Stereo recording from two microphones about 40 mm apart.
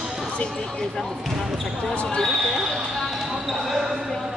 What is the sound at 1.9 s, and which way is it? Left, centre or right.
Speech, left.